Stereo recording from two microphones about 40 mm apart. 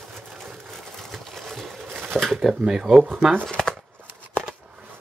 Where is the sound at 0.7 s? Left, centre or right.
Centre.